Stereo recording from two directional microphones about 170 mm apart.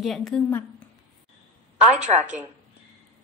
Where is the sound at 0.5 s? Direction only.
10° left (ahead or behind).